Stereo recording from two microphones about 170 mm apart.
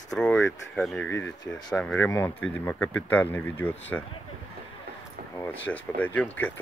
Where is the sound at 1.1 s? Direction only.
20° left (ahead or behind).